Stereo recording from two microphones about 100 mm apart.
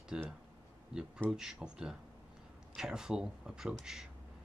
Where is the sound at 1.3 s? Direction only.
5° right (ahead or behind).